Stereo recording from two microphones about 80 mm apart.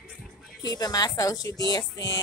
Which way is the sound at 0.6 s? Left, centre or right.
Left.